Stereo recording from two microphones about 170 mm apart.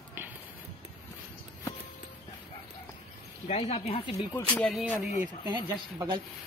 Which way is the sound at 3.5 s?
40° left (ahead or behind).